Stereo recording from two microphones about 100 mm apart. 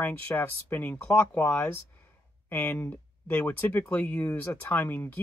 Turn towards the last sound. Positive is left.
turn(degrees=20)  # may be behind; listen again after turning